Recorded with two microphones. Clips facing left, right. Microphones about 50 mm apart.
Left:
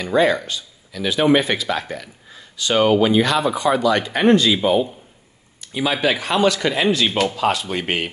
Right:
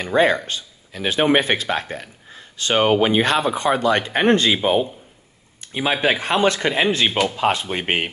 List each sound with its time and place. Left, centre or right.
0.0 s speech: right
5.6 s speech: right